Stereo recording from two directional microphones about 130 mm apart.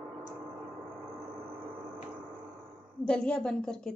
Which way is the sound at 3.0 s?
5° left (ahead or behind).